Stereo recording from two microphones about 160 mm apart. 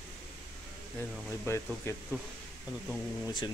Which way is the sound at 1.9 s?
15° left (ahead or behind).